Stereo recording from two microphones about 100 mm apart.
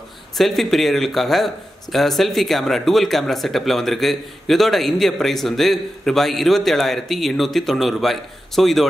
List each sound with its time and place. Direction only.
0.4 s speech: centre (ahead or behind)